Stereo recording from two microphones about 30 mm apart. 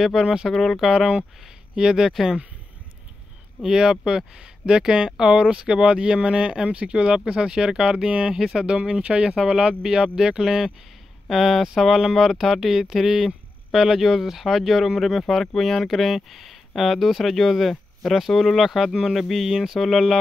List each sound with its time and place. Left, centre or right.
0.0 s speech: centre
0.5 s speech: centre
0.9 s speech: right
2.0 s speech: centre
3.6 s speech: centre
5.1 s speech: centre
5.4 s speech: right
10.1 s speech: centre
11.2 s speech: centre
15.0 s speech: centre
19.1 s speech: centre